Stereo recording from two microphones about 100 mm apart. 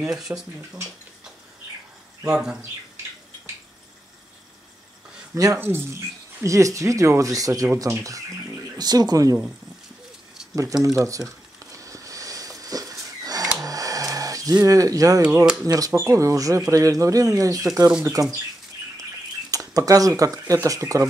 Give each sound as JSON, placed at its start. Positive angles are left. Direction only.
{"t": 0.0, "sound": "speech", "side_deg": -5}
{"t": 2.2, "sound": "speech", "side_deg": -5}
{"t": 5.3, "sound": "speech", "side_deg": -30}
{"t": 10.5, "sound": "speech", "side_deg": -30}
{"t": 11.6, "sound": "a sound", "side_deg": -35}
{"t": 15.6, "sound": "speech", "side_deg": -35}
{"t": 19.5, "sound": "speech", "side_deg": -35}